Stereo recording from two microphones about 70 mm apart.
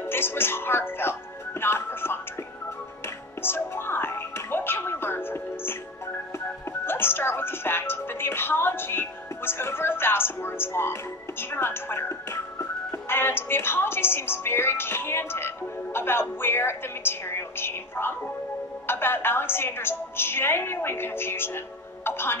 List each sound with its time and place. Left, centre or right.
0.0 s speech: left
3.4 s speech: left
6.9 s speech: left